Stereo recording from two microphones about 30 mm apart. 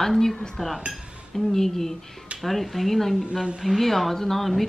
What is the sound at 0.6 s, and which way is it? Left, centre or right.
Speech, centre.